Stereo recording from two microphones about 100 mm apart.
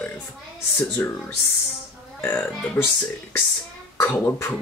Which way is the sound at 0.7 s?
25° left (ahead or behind).